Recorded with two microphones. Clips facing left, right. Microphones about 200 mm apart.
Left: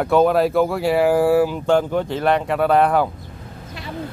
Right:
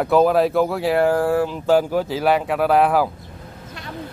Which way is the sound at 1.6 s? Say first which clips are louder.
Right 1 dB; 5° right (ahead or behind).